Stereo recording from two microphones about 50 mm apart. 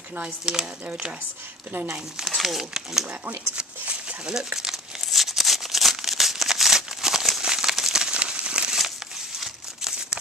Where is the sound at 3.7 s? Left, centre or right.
Right.